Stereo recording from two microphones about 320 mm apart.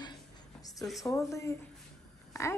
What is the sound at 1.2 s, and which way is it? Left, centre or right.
Speech, centre.